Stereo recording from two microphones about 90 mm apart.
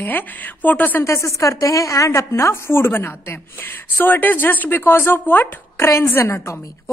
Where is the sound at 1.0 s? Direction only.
35° left (ahead or behind).